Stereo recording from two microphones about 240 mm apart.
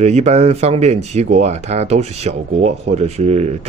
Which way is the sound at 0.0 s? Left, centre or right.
Right.